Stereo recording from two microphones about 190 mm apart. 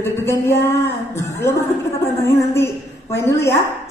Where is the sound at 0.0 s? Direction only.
15° left (ahead or behind).